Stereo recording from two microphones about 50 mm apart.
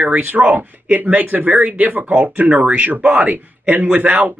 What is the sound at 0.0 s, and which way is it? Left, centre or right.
A man's voice, right.